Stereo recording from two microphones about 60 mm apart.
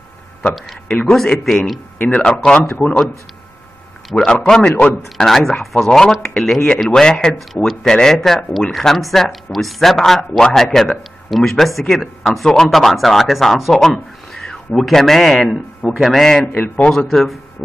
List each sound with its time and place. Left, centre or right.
0.4 s a man's voice: left
1.0 s speech: centre
2.0 s speech: left
2.2 s speech: centre
2.7 s a man's voice: left
4.1 s speech: centre
5.1 s speech: centre
16.5 s a man's voice: left
16.8 s speech: centre
17.1 s speech: centre